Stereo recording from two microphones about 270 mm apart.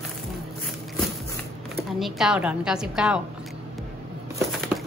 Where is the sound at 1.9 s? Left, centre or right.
Centre.